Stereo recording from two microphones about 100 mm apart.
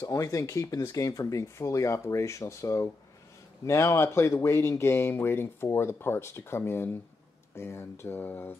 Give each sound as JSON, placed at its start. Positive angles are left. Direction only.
{"t": 0.0, "sound": "speech", "side_deg": 30}